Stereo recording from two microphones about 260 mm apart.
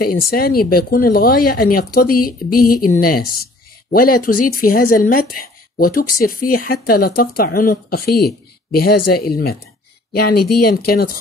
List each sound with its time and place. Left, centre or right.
0.0 s speech: left
10.1 s speech: left